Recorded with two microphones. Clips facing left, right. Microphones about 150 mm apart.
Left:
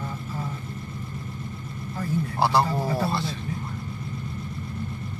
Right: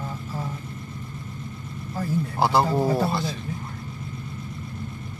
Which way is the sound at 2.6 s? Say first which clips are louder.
Right 4 dB; 25° right (ahead or behind).